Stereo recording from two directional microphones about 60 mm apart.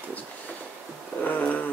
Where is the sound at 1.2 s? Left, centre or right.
Left.